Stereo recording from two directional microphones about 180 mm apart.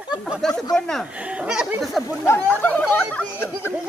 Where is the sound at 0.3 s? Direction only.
Centre (ahead or behind).